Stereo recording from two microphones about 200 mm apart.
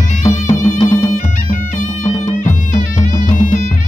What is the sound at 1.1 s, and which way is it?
Bagpipes, 40° left (ahead or behind).